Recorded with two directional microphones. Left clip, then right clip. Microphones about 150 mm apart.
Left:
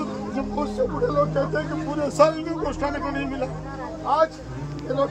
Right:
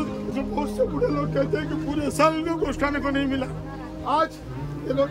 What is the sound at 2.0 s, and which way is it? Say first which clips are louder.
A man's voice: left 2 dB; 10° right (ahead or behind).